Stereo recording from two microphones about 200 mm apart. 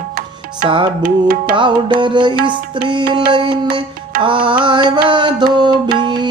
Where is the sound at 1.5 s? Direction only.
25° right (ahead or behind).